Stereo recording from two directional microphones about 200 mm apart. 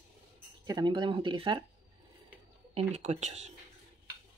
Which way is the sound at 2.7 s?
35° right (ahead or behind).